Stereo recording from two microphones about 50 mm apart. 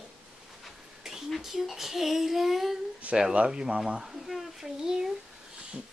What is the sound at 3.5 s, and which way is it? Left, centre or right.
Speech, centre.